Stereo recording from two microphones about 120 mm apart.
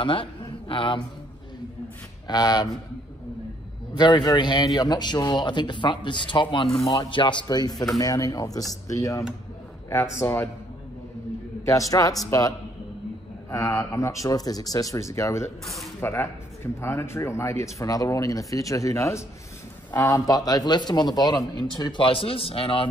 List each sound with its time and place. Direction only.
0.0 s speech: 45° left (ahead or behind)
2.2 s a man's voice: 35° left (ahead or behind)
3.9 s a man's voice: 35° left (ahead or behind)
6.8 s a man's voice: 30° left (ahead or behind)
7.1 s a man's voice: 40° left (ahead or behind); by 9.2 s 25° left (ahead or behind)
10.2 s speech: 20° left (ahead or behind)
11.6 s speech: 25° left (ahead or behind)
15.6 s speech: centre (ahead or behind)
16.0 s a man's voice: 20° left (ahead or behind); by 22.8 s 50° left (ahead or behind)